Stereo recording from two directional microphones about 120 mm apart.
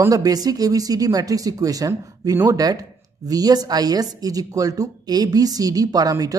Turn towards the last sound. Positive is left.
turn(degrees=-30)  # may be behind; listen again after turning